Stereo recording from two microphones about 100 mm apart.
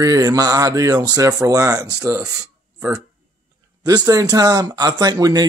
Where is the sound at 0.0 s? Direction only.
35° right (ahead or behind).